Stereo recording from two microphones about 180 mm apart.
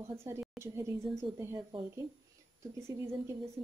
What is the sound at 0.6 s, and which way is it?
Speech, 15° right (ahead or behind).